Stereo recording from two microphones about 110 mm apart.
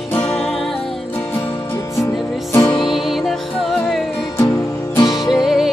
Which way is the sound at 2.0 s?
25° left (ahead or behind).